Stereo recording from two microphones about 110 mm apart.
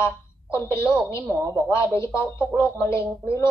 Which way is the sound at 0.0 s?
25° left (ahead or behind).